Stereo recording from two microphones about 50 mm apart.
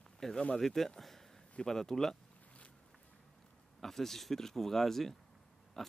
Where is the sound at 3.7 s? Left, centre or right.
Centre.